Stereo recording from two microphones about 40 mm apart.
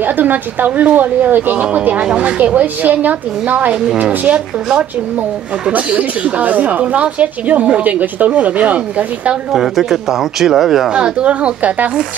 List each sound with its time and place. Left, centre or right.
0.0 s speech: right
2.0 s a woman's voice: right
5.7 s a woman's voice: right
9.5 s speech: centre
11.1 s a woman's voice: right